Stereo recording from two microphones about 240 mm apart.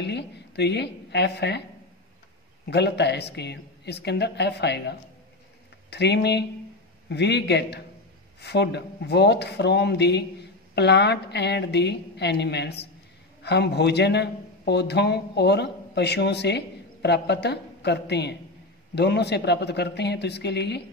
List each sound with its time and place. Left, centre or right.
0.0 s a woman's voice: left
2.7 s speech: left